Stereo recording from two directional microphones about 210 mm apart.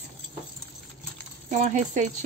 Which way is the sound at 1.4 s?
35° right (ahead or behind).